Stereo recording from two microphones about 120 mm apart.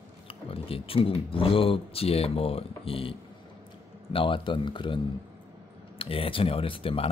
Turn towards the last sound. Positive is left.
turn(degrees=50)  # may be behind; listen again after turning